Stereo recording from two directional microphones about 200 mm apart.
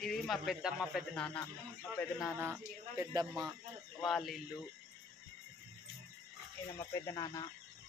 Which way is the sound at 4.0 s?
Centre (ahead or behind).